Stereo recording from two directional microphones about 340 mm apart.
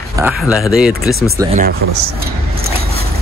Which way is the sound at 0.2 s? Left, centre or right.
Centre.